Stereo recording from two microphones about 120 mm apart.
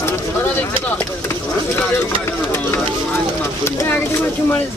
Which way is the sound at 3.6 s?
20° left (ahead or behind).